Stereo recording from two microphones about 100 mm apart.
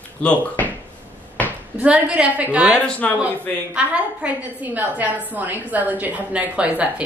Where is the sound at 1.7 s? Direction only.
15° right (ahead or behind).